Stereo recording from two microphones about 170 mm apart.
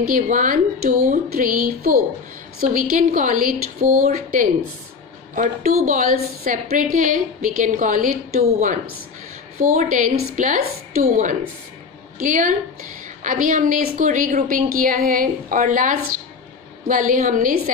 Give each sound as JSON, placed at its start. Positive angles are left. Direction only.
{"t": 0.0, "sound": "a woman's voice", "side_deg": -50}
{"t": 9.8, "sound": "a woman's voice", "side_deg": -50}